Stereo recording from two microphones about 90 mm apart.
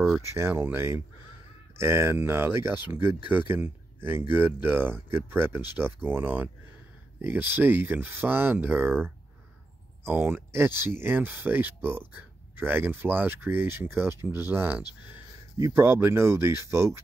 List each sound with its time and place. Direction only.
0.2 s speech: 30° right (ahead or behind)